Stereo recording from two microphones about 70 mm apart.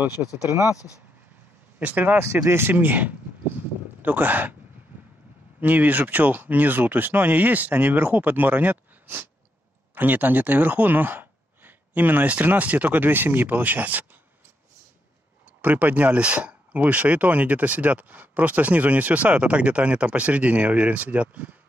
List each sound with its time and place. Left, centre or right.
0.5 s speech: right
1.8 s speech: right
2.1 s speech: right
5.6 s speech: right
15.6 s speech: right